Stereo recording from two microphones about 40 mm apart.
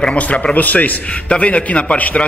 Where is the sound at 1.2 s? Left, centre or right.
Left.